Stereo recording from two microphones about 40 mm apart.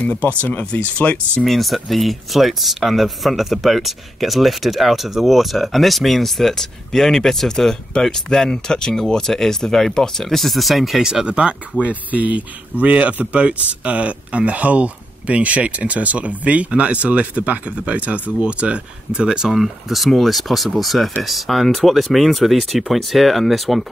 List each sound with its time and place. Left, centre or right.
0.0 s speech: left
1.4 s speech: centre
11.1 s speech: right
11.8 s speech: right; by 19.5 s centre
19.5 s speech: centre